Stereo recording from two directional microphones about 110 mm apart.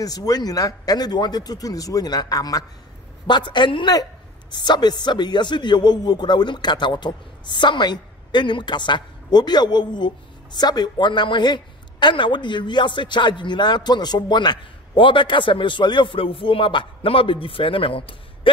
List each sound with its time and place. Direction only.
0.0 s speech: 35° left (ahead or behind)
3.3 s a man's voice: 45° left (ahead or behind)